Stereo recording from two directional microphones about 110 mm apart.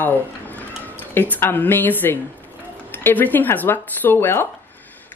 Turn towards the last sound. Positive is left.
turn(degrees=20)  # may be behind; listen again after turning